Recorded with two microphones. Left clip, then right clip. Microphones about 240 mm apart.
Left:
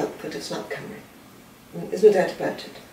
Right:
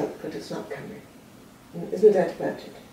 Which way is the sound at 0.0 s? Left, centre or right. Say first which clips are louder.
Left 2 dB; centre.